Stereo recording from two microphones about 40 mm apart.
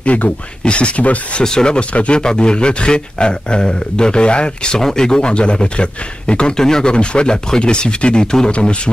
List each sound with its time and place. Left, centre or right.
0.0 s speech: left
1.4 s a man's voice: centre
4.7 s a man's voice: centre
8.5 s a man's voice: left